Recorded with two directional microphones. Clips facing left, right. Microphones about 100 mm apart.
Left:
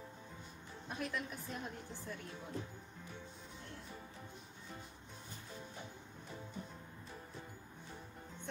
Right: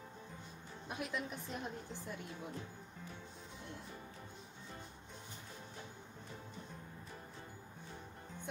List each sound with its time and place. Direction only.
0.8 s a woman's voice: 15° right (ahead or behind)